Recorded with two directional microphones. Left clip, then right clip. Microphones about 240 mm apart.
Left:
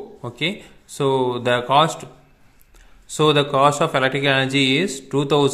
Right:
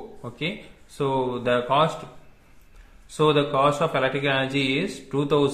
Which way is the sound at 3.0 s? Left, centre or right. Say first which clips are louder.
Left 3 dB; left.